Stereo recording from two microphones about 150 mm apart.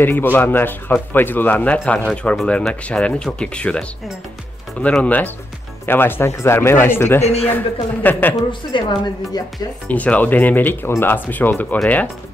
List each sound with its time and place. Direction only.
0.0 s speech: 15° left (ahead or behind)
4.8 s speech: 10° left (ahead or behind)
7.2 s speech: 45° left (ahead or behind)
7.4 s speech: 10° left (ahead or behind)
9.8 s speech: 10° left (ahead or behind)